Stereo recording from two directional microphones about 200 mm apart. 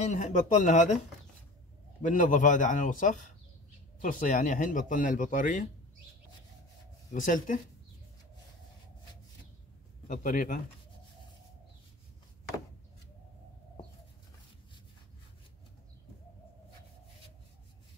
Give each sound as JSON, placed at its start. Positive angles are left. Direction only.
{"t": 0.0, "sound": "speech", "side_deg": 35}
{"t": 2.0, "sound": "speech", "side_deg": 40}
{"t": 7.1, "sound": "speech", "side_deg": 40}
{"t": 10.0, "sound": "speech", "side_deg": 40}